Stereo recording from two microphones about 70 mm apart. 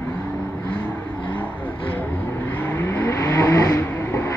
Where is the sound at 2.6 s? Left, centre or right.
Left.